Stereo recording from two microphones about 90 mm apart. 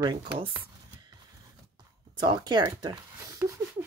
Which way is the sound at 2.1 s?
60° right (ahead or behind).